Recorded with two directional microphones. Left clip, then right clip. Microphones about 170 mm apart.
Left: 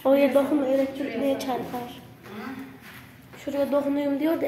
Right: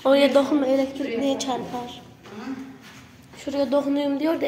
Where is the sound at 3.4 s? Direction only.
10° right (ahead or behind).